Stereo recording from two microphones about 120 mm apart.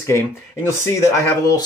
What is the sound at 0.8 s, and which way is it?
Speech, 25° left (ahead or behind).